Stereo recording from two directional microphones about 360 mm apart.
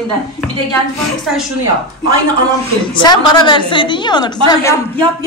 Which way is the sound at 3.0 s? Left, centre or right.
Centre.